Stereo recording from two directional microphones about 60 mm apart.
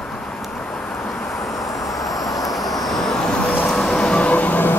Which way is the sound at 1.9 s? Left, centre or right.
Left.